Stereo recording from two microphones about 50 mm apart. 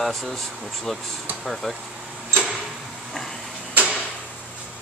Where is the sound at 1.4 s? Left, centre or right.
Centre.